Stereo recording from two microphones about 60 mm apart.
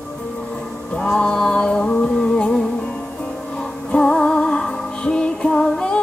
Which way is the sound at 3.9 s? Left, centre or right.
Centre.